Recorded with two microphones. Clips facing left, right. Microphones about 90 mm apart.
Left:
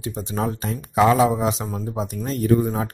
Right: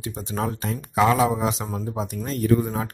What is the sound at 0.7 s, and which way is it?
Speech, 10° left (ahead or behind).